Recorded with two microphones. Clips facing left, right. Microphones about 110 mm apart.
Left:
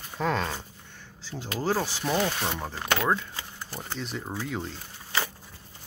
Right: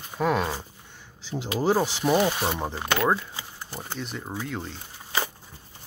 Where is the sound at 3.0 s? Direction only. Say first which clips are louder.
Right 3 dB; 10° right (ahead or behind).